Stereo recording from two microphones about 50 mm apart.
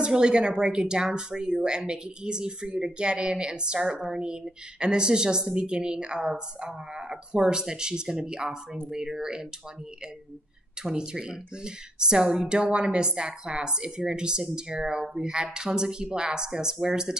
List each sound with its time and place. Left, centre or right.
0.0 s speech: centre
10.8 s speech: centre